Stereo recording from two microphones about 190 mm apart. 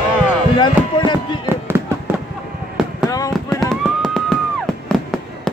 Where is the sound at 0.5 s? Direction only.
25° left (ahead or behind).